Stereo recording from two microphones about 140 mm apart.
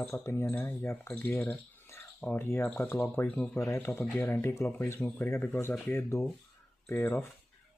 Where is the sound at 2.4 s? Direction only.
20° left (ahead or behind).